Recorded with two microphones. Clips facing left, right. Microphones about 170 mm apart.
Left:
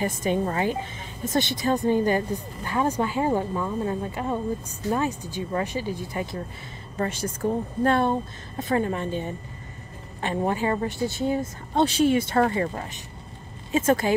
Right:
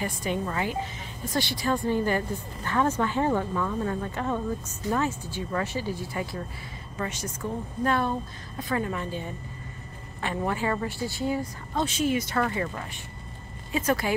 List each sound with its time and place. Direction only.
0.0 s a woman's voice: 20° left (ahead or behind)
7.1 s a woman's voice: 30° left (ahead or behind)
10.2 s a woman's voice: 25° left (ahead or behind)
14.0 s a woman's voice: 25° left (ahead or behind)